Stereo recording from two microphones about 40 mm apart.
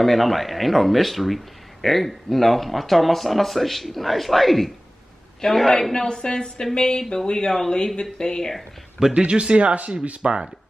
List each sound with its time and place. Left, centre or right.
0.0 s a man's voice: centre
9.1 s speech: right